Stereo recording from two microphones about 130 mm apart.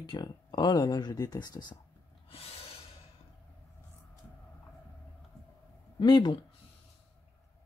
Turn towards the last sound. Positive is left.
turn(degrees=35)  # may be behind; listen again after turning